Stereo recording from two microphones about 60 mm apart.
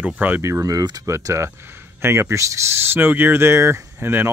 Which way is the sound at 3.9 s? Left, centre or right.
Right.